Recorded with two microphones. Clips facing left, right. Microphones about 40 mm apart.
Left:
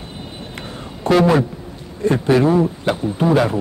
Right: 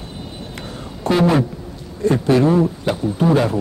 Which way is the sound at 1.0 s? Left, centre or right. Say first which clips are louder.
Left 3 dB; left.